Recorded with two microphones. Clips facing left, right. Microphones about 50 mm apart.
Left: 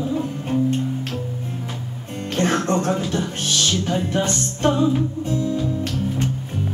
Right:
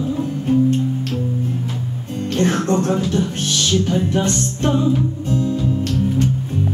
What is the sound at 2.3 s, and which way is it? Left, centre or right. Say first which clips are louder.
Music: right 2 dB; left.